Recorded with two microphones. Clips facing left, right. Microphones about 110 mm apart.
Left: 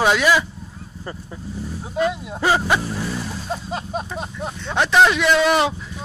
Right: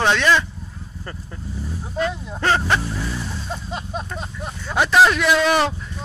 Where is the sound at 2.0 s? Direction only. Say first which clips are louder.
Left 2 dB; 10° left (ahead or behind).